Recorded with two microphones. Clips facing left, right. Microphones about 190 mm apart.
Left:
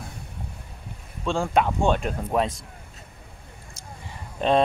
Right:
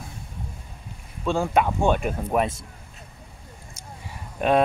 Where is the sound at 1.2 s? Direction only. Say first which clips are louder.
Right 1 dB; 5° right (ahead or behind).